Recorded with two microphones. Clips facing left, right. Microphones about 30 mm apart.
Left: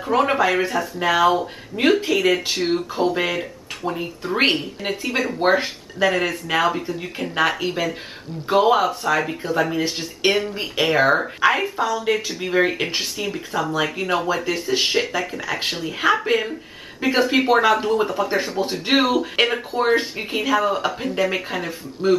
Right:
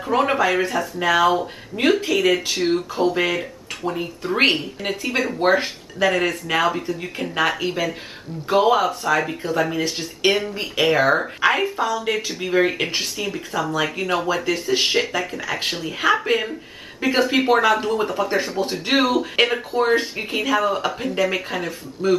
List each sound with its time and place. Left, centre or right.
0.0 s speech: centre
22.0 s a man's voice: left